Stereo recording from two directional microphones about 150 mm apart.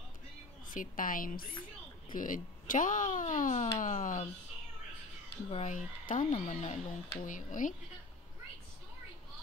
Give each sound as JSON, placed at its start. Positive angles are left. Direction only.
{"t": 0.7, "sound": "a woman's voice", "side_deg": 65}
{"t": 5.5, "sound": "speech", "side_deg": 55}
{"t": 6.3, "sound": "speech", "side_deg": 45}